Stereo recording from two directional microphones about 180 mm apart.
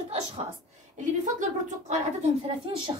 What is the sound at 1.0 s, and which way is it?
Speech, 45° right (ahead or behind).